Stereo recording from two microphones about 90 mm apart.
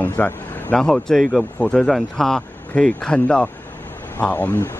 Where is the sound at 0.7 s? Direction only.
5° left (ahead or behind).